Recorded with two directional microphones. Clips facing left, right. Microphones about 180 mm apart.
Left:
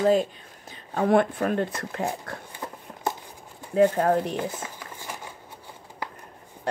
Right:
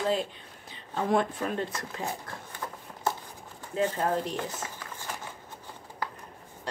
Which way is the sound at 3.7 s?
55° left (ahead or behind).